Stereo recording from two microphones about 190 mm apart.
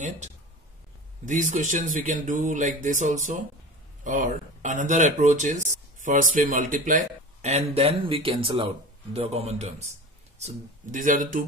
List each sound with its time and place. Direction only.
1.2 s speech: 40° right (ahead or behind)